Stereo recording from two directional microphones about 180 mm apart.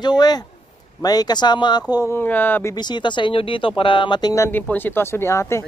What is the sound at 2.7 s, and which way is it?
Speech, 25° left (ahead or behind).